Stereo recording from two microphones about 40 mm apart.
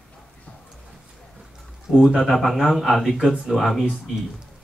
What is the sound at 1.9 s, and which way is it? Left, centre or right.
Speech, centre.